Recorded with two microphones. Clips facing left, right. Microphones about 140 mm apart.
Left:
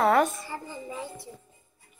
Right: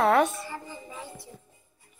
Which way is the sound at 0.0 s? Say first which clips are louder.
Even; centre (ahead or behind).